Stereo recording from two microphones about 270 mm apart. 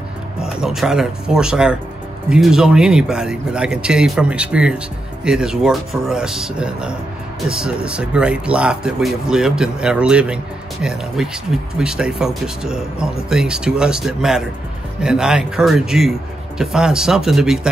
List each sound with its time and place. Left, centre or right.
0.4 s speech: centre